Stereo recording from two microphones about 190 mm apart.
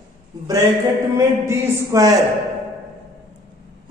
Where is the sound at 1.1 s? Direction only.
15° right (ahead or behind).